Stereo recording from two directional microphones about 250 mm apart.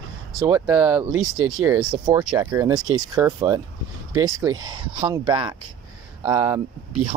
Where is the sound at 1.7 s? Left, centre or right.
Centre.